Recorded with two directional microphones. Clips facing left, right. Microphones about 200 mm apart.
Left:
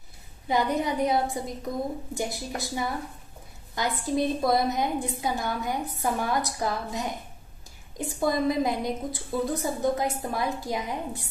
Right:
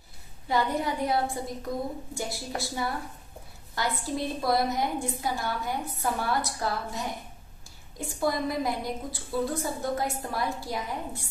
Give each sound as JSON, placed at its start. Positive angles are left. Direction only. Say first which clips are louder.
{"t": 0.5, "sound": "a woman's voice", "louder": "left 2 dB", "side_deg": 20}